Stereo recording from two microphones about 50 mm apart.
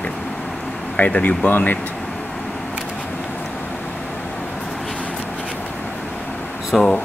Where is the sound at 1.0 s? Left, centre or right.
Left.